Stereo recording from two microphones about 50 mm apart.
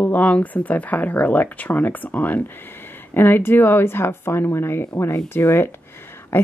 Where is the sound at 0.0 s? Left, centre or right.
Left.